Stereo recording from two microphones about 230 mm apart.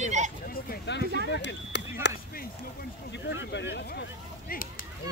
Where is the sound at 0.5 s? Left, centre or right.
Left.